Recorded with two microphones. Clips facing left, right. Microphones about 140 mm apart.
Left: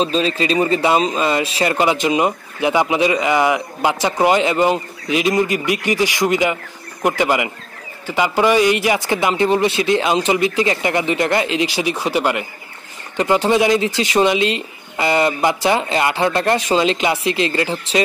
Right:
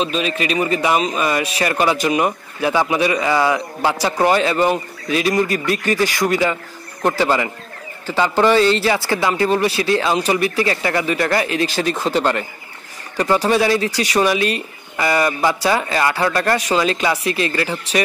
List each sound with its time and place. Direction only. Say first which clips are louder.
0.0 s speech: left 3 dB; 30° left (ahead or behind)